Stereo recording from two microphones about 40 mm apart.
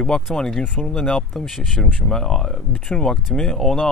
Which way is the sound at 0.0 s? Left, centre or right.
Centre.